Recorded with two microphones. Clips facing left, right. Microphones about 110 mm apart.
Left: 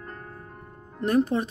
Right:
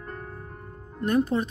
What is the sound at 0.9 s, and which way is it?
Speech, 30° left (ahead or behind).